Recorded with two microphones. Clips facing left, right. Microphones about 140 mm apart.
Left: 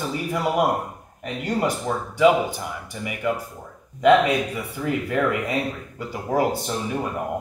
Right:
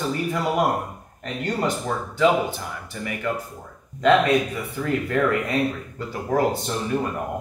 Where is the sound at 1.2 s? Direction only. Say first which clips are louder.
Left 1 dB; 10° left (ahead or behind).